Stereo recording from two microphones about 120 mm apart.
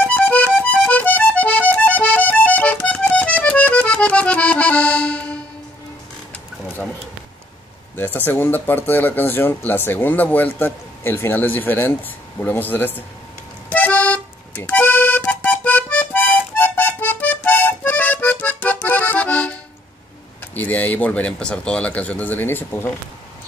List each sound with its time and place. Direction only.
0.0 s accordion: 10° left (ahead or behind)
7.9 s a sound: 15° left (ahead or behind)
8.3 s speech: 15° left (ahead or behind)
13.7 s accordion: 10° left (ahead or behind)
20.5 s speech: 15° left (ahead or behind)